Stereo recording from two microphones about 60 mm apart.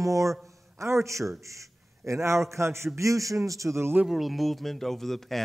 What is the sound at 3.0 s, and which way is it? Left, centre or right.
Speech, right.